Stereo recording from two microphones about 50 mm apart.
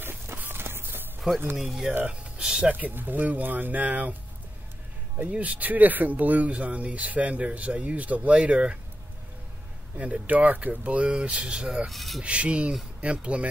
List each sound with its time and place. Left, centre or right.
0.0 s music: right
1.3 s speech: centre
1.9 s speech: centre
2.4 s speech: centre
2.7 s speech: right
5.1 s speech: right
9.9 s speech: right
11.9 s rub: centre
12.2 s speech: right